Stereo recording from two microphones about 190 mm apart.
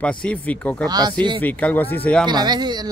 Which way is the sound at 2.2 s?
20° right (ahead or behind).